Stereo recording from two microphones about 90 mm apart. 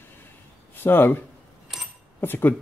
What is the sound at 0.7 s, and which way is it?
Speech, 25° left (ahead or behind).